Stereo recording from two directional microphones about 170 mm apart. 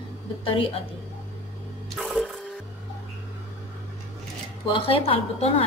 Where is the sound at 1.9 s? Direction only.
Centre (ahead or behind).